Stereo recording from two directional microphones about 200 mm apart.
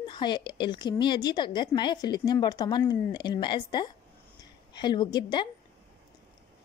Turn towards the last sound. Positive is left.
turn(degrees=20)  # may be behind; listen again after turning